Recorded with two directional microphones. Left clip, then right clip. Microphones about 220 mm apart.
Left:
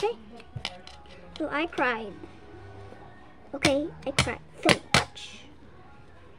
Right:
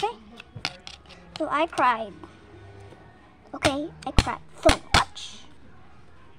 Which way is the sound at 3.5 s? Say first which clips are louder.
Even; 20° right (ahead or behind).